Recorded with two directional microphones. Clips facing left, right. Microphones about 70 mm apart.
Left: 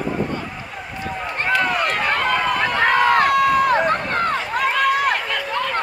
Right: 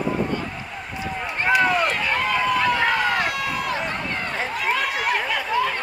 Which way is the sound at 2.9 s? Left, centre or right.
Left.